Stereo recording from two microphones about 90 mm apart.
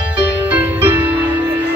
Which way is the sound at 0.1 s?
20° right (ahead or behind).